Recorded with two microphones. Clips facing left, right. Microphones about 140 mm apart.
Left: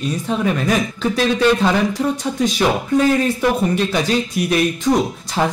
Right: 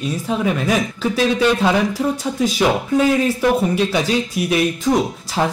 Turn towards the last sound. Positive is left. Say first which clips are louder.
# left 1 dB
turn(degrees=-5)  # may be behind; listen again after turning